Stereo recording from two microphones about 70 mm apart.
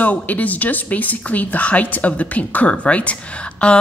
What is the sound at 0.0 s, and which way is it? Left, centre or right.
A woman's voice, left.